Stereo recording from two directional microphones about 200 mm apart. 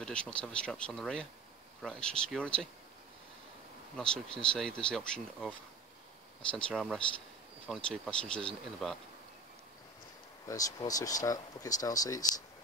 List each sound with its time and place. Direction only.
0.0 s speech: 5° left (ahead or behind)
3.9 s speech: 5° left (ahead or behind)
6.5 s speech: centre (ahead or behind)
10.5 s speech: 15° left (ahead or behind)